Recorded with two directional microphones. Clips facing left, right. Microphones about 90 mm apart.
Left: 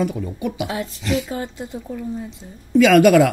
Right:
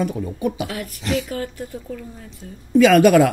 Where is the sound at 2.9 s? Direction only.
40° right (ahead or behind).